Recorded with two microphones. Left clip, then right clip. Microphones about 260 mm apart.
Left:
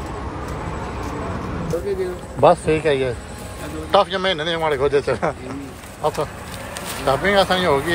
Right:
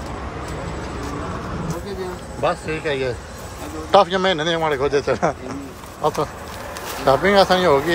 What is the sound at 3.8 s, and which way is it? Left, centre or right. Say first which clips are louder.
Speech: right 2 dB; centre.